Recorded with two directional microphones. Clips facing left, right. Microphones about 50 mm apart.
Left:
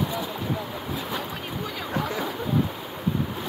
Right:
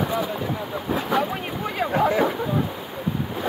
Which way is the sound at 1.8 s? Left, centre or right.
Right.